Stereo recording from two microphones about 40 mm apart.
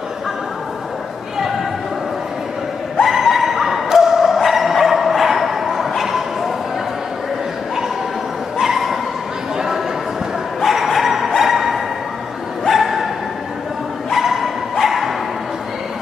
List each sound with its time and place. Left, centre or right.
3.0 s bow-wow: centre
8.5 s dog: centre
10.6 s dog: centre
12.6 s bow-wow: centre
14.1 s dog: centre